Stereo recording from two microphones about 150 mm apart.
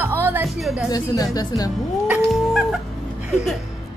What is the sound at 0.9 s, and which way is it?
Speech, 25° left (ahead or behind).